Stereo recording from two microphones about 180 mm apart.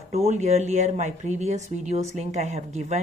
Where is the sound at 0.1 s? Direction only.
40° right (ahead or behind).